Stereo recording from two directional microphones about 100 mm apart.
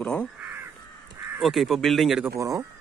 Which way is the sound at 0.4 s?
15° right (ahead or behind).